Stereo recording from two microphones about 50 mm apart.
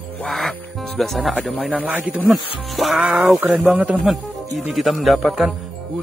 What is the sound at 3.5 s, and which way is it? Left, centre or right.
Speech, right.